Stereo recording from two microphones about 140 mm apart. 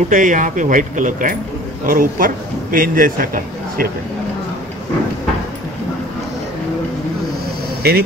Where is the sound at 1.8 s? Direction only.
80° right.